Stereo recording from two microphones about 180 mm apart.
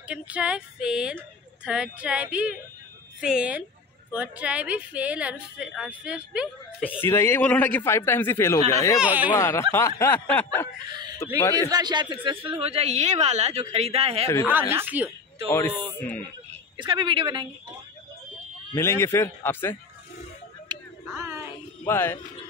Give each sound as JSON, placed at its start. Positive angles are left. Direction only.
{"t": 0.1, "sound": "speech", "side_deg": -5}
{"t": 7.0, "sound": "a man's voice", "side_deg": 15}
{"t": 9.0, "sound": "speech", "side_deg": -10}
{"t": 9.3, "sound": "a man's voice", "side_deg": 15}
{"t": 11.7, "sound": "speech", "side_deg": -25}
{"t": 14.2, "sound": "a man's voice", "side_deg": 15}
{"t": 14.7, "sound": "speech", "side_deg": -10}
{"t": 15.5, "sound": "a man's voice", "side_deg": 10}
{"t": 16.7, "sound": "a woman's voice", "side_deg": -25}
{"t": 18.8, "sound": "a man's voice", "side_deg": 15}
{"t": 20.7, "sound": "a sound", "side_deg": -25}
{"t": 21.2, "sound": "music", "side_deg": -15}
{"t": 21.8, "sound": "a man's voice", "side_deg": 15}